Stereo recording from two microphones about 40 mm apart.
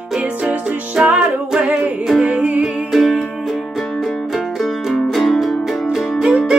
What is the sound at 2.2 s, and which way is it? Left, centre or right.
Music, right.